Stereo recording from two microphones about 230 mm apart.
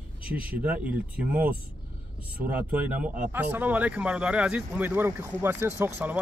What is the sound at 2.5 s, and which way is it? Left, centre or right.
Speech, centre.